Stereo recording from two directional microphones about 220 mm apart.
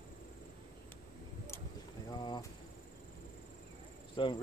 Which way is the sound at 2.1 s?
20° left (ahead or behind).